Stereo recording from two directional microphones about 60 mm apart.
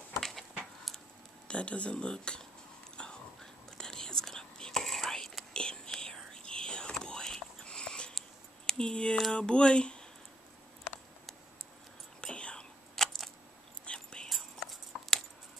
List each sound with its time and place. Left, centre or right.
0.2 s a sound: centre
1.5 s speech: centre
3.0 s biting: centre
3.7 s whispering: centre
8.6 s a sound: centre
9.3 s speech: centre
12.2 s whispering: centre
12.9 s camera: centre
13.8 s whispering: centre
14.3 s a sound: centre